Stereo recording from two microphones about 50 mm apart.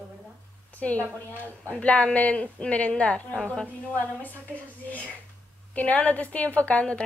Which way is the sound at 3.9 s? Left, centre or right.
Left.